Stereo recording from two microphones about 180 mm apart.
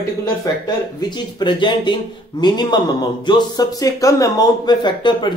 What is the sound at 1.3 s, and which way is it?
Speech, 25° left (ahead or behind).